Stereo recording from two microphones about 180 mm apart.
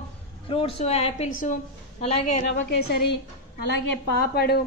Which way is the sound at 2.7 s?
60° left (ahead or behind).